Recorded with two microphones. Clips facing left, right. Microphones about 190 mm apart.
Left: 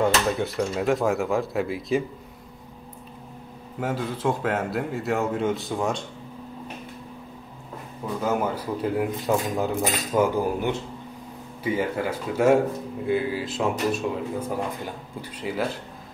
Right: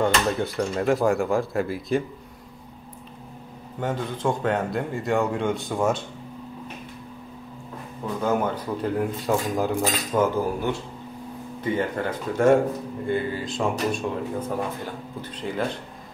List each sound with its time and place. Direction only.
0.0 s a man's voice: centre (ahead or behind)
3.8 s a man's voice: 5° left (ahead or behind)
8.2 s speech: 5° left (ahead or behind)
9.8 s a man's voice: 15° left (ahead or behind)
15.3 s a man's voice: 5° left (ahead or behind)